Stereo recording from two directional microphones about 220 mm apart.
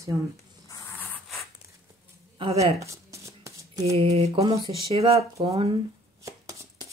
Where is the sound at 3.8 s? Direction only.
30° right (ahead or behind).